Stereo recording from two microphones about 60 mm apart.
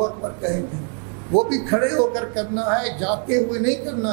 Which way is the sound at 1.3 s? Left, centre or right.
Centre.